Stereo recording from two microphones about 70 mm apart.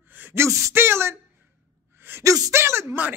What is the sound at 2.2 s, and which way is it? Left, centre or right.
Speech, right.